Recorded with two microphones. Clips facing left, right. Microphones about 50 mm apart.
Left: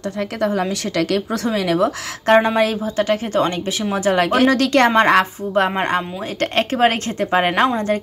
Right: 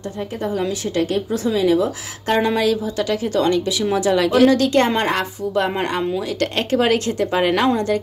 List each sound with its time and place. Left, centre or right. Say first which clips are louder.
0.4 s a woman's voice: left 2 dB; left
5.8 s speech: left 1 dB; left